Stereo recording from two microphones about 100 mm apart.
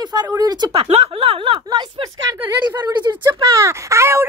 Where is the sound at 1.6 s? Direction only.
45° right (ahead or behind).